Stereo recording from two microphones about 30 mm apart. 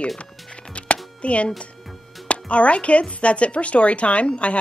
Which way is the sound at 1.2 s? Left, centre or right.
Left.